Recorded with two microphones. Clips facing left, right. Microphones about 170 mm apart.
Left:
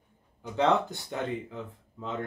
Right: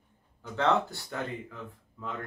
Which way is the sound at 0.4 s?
20° left (ahead or behind).